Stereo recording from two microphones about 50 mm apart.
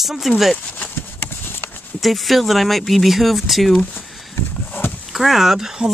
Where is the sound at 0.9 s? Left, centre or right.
Left.